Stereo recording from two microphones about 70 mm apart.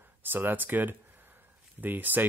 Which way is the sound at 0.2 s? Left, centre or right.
Right.